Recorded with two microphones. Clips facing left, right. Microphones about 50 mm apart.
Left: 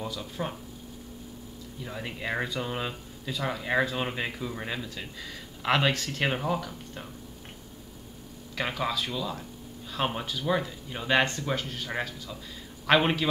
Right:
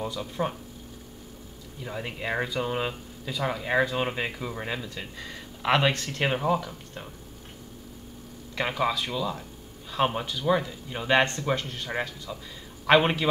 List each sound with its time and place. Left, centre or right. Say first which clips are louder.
0.0 s speech: right 4 dB; centre
1.9 s speech: right 2 dB; centre
5.1 s speech: right 1 dB; right
5.6 s speech: right 2 dB; centre
8.5 s speech: right 3 dB; centre
12.3 s speech: right 2 dB; centre